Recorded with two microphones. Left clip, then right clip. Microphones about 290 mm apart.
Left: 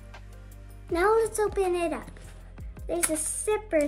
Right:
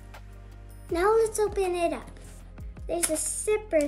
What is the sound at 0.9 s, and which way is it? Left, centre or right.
Speech, centre.